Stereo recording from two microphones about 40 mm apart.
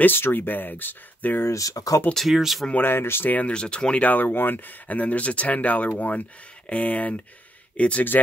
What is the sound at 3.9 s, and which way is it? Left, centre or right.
Speech, left.